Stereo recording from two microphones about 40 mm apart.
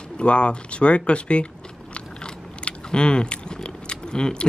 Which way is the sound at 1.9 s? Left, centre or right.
Left.